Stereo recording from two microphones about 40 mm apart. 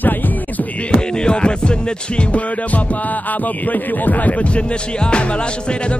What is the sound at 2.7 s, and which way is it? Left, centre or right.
Speech, left.